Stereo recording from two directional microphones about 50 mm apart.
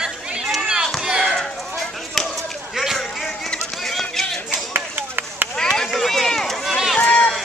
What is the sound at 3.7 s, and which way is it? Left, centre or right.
Run, centre.